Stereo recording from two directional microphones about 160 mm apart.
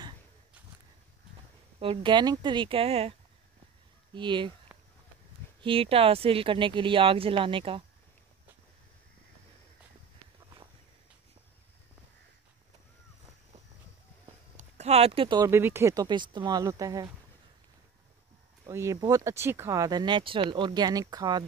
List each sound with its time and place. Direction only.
1.8 s speech: 30° right (ahead or behind)
4.7 s a sound: 10° right (ahead or behind)
5.6 s speech: 35° right (ahead or behind)
14.6 s speech: 40° right (ahead or behind); by 17.1 s 20° right (ahead or behind)
18.7 s speech: 15° right (ahead or behind)